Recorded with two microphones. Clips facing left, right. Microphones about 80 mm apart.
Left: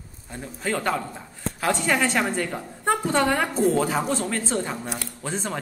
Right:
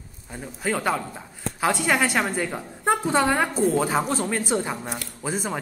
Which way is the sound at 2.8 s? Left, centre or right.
Centre.